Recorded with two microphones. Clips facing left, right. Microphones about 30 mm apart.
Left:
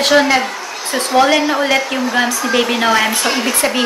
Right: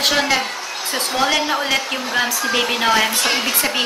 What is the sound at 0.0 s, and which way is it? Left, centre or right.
A woman's voice, centre.